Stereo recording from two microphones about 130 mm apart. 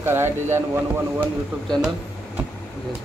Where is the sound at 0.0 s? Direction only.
20° right (ahead or behind).